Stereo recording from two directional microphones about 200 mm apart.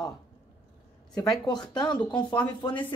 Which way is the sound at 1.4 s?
20° left (ahead or behind).